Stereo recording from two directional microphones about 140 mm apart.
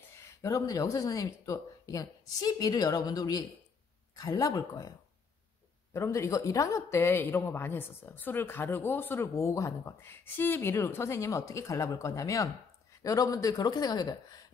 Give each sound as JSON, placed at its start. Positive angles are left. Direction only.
{"t": 0.4, "sound": "speech", "side_deg": 25}
{"t": 5.9, "sound": "speech", "side_deg": 20}